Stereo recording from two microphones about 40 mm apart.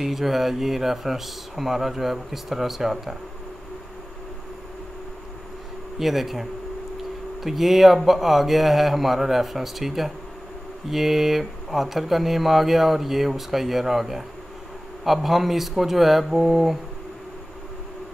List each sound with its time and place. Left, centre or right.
0.0 s speech: centre
5.9 s speech: centre
7.4 s speech: centre